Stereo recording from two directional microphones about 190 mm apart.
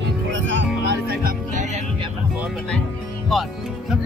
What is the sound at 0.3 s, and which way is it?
Music, 70° right (ahead or behind).